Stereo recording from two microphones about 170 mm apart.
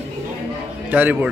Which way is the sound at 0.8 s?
10° right (ahead or behind).